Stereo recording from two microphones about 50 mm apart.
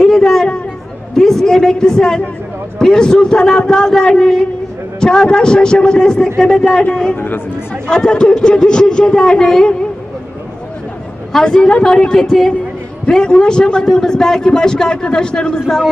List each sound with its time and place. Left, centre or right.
0.0 s chatter: centre
1.1 s a man's voice: centre
7.2 s speech: left
7.8 s a man's voice: centre
11.4 s a man's voice: centre